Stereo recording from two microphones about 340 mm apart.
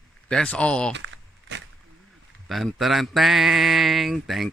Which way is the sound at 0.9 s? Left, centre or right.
Right.